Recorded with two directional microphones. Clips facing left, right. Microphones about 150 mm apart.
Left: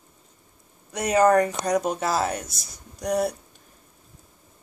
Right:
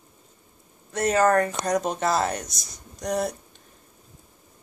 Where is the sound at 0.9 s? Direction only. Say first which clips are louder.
Left 2 dB; 10° left (ahead or behind).